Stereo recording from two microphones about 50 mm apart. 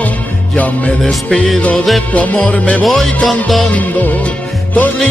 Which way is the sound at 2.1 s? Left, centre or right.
Left.